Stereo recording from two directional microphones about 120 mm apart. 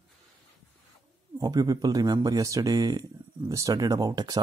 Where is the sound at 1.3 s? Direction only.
30° right (ahead or behind).